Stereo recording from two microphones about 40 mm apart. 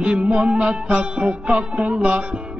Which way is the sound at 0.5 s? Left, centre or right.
Right.